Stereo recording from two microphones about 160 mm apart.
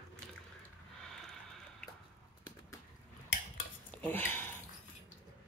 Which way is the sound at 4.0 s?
15° left (ahead or behind).